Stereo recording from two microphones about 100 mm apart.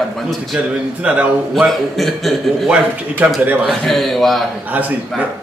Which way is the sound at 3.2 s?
15° right (ahead or behind).